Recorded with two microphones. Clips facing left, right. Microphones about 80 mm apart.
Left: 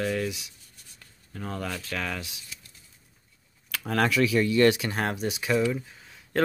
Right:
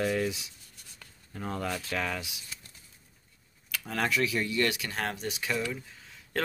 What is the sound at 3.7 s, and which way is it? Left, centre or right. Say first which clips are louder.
Speech: left 5 dB; left.